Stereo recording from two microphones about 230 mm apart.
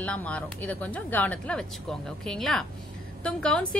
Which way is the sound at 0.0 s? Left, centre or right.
Centre.